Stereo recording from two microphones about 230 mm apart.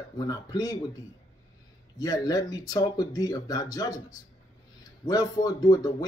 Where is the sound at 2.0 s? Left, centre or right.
Centre.